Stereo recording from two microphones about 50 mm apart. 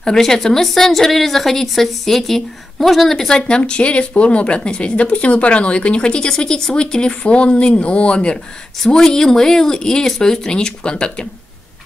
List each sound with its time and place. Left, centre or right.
0.0 s a woman's voice: centre
8.8 s a woman's voice: centre